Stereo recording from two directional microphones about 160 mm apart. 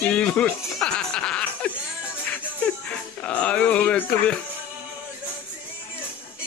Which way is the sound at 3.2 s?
5° left (ahead or behind).